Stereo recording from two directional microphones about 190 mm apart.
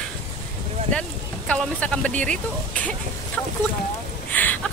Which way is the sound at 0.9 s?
5° left (ahead or behind).